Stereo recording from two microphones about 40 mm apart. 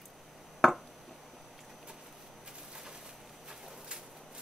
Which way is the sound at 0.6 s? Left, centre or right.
Centre.